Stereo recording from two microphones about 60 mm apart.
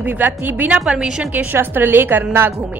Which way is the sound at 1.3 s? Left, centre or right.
Right.